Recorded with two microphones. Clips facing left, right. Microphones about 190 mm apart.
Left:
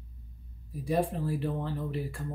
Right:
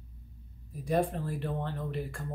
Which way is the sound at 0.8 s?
5° left (ahead or behind).